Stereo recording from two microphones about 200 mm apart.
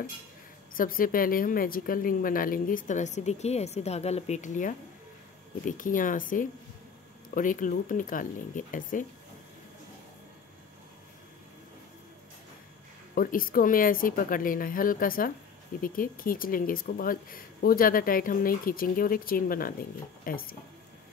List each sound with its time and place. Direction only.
0.7 s a woman's voice: 45° left (ahead or behind)
13.1 s a woman's voice: 45° left (ahead or behind)